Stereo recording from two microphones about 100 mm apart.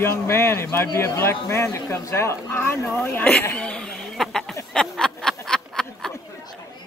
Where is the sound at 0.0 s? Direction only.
25° left (ahead or behind).